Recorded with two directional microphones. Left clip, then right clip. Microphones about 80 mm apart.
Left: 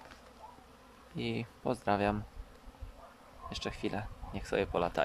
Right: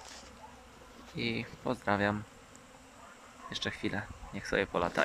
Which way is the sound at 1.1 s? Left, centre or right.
Left.